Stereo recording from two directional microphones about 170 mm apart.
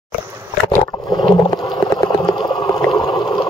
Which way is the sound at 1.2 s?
25° left (ahead or behind).